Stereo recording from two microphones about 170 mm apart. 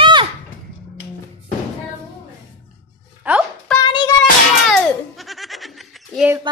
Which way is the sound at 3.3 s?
5° right (ahead or behind).